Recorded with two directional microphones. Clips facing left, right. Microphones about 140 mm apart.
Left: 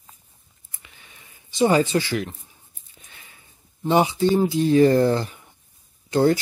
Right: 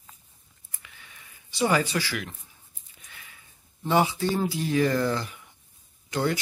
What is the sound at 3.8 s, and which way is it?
Speech, 20° left (ahead or behind).